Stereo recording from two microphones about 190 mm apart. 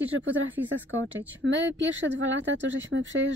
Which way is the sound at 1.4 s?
75° right (ahead or behind).